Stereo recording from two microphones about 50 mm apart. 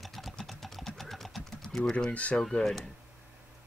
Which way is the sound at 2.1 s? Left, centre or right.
Left.